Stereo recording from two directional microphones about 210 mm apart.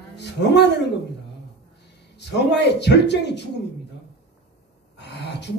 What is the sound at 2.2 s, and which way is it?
A man's voice, 55° left (ahead or behind).